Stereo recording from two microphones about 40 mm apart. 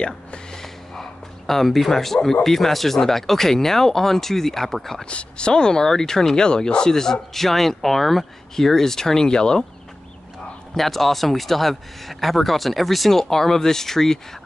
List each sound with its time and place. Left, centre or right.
0.0 s a sound: left
1.5 s speech: centre
5.0 s speech: left
10.7 s speech: centre